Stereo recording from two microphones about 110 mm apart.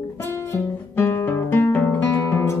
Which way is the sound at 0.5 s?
25° left (ahead or behind).